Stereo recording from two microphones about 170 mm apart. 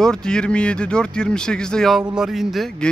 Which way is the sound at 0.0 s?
5° left (ahead or behind).